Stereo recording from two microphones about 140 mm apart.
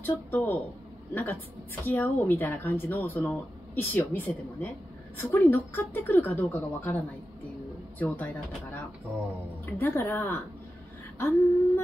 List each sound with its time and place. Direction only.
0.0 s a woman's voice: 15° left (ahead or behind)
8.0 s a woman's voice: 10° left (ahead or behind)